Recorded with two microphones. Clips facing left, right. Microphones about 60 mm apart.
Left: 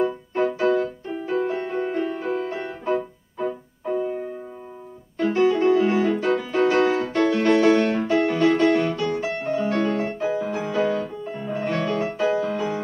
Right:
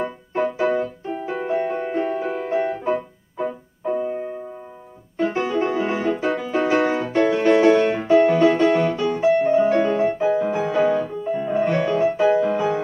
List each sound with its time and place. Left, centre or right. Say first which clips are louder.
0.0 s music: left 1 dB; centre
5.1 s piano: right 1 dB; centre
5.4 s music: left 7 dB; centre